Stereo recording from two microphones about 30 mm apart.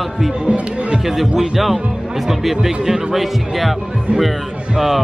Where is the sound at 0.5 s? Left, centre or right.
Right.